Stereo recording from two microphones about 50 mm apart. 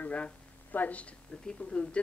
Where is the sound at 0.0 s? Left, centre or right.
Left.